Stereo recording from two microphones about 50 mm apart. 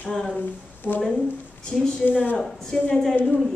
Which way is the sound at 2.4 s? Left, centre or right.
Centre.